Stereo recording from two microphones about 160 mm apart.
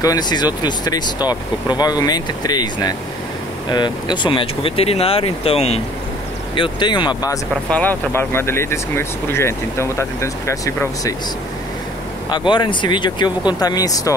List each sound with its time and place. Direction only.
0.0 s speech: 25° left (ahead or behind)
7.7 s speech: 10° left (ahead or behind)
12.3 s speech: 30° left (ahead or behind)